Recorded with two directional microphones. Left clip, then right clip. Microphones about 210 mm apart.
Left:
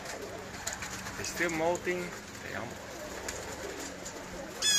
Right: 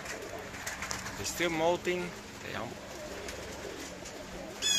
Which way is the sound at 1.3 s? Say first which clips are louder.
Right 1 dB; 25° right (ahead or behind).